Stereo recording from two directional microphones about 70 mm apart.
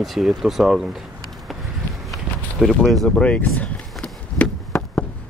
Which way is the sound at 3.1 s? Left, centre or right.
Centre.